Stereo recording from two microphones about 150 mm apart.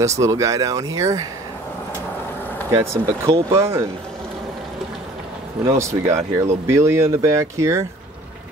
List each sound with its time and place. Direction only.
0.0 s speech: 20° right (ahead or behind)
2.7 s speech: 20° right (ahead or behind)
5.8 s speech: 20° right (ahead or behind)